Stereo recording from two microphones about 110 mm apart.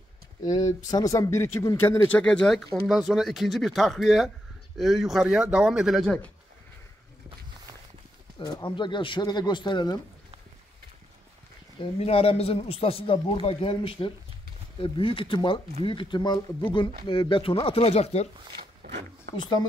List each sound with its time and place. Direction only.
0.7 s speech: 30° left (ahead or behind); by 6.3 s 5° left (ahead or behind)
8.6 s speech: 45° left (ahead or behind)
12.0 s a man's voice: 60° left (ahead or behind)